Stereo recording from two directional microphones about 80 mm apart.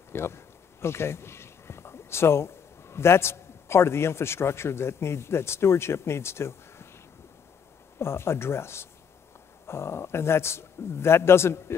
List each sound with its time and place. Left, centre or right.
0.1 s speech: left
8.0 s a man's voice: left